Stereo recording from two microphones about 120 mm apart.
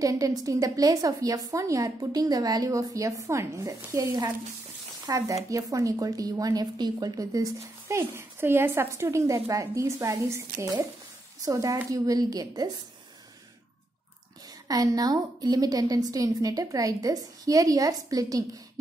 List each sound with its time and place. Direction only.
0.0 s a woman's voice: 30° right (ahead or behind)
14.7 s a woman's voice: 30° right (ahead or behind)